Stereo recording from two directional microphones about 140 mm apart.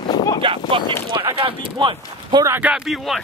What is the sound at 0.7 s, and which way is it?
Speech, 40° right (ahead or behind).